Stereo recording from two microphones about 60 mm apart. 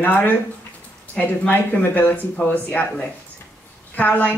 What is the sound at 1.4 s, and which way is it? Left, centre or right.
A woman's voice, left.